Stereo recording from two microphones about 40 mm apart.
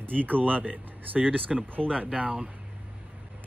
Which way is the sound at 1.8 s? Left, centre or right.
Centre.